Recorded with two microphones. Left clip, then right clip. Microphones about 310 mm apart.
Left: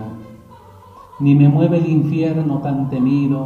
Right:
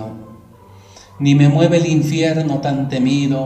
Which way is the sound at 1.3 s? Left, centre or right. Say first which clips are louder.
Right 3 dB; right.